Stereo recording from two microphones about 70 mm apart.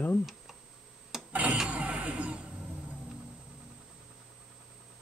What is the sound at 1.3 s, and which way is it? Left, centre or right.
Vehicle, right.